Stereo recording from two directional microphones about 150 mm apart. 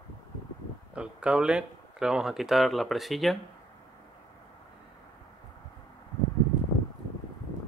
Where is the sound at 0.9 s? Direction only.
5° right (ahead or behind).